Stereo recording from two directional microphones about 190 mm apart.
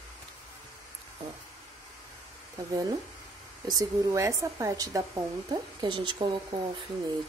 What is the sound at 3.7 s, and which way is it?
Speech, 15° right (ahead or behind).